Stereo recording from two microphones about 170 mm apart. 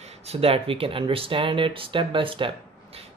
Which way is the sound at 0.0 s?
35° right (ahead or behind).